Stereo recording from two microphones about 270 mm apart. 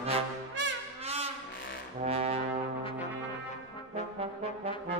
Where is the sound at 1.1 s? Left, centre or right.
Right.